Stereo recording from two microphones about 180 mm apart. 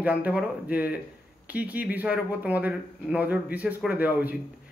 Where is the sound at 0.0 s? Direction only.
5° right (ahead or behind).